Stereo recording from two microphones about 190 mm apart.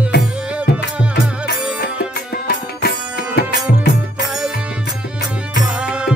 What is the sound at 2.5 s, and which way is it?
Music, 55° left (ahead or behind).